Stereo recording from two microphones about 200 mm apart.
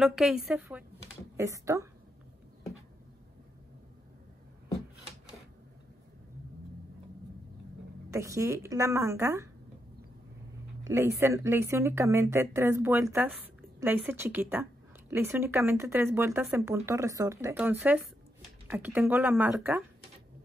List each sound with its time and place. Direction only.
0.0 s a woman's voice: centre (ahead or behind)
8.1 s speech: 15° right (ahead or behind)
10.8 s speech: 15° right (ahead or behind)